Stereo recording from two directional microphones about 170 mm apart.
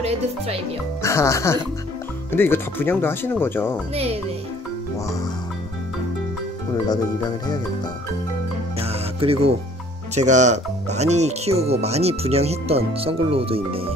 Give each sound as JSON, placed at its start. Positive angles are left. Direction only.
{"t": 1.0, "sound": "speech", "side_deg": 15}
{"t": 3.9, "sound": "speech", "side_deg": -35}
{"t": 5.0, "sound": "speech", "side_deg": 20}
{"t": 6.7, "sound": "speech", "side_deg": 25}
{"t": 8.7, "sound": "music", "side_deg": -35}
{"t": 10.1, "sound": "speech", "side_deg": -45}